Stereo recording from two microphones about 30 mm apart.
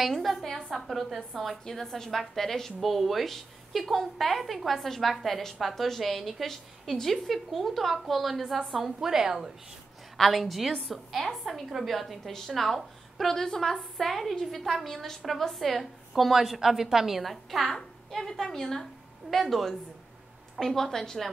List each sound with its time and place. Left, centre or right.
0.0 s a woman's voice: centre
9.0 s a woman's voice: centre
10.1 s a woman's voice: centre
13.3 s a woman's voice: centre
18.2 s a woman's voice: centre